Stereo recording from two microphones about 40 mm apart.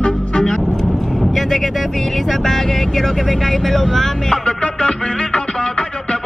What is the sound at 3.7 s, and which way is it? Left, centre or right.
Speech, centre.